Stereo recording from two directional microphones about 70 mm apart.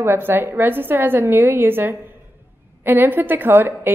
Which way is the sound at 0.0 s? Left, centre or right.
Right.